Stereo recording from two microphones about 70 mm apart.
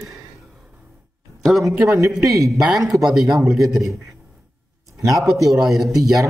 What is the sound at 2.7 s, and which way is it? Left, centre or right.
Speech, centre.